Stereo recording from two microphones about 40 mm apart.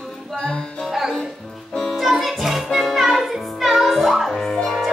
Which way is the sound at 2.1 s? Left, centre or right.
Centre.